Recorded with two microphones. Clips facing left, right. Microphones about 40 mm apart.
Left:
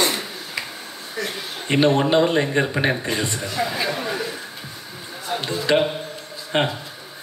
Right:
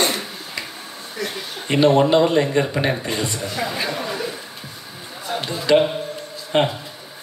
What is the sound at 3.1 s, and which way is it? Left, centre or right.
Speech, left.